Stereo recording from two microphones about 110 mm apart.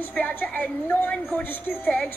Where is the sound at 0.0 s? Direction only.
15° left (ahead or behind).